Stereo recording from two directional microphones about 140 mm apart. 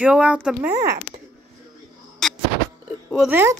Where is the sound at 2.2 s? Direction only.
Centre (ahead or behind).